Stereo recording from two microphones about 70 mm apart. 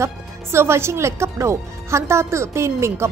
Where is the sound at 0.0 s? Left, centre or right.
Right.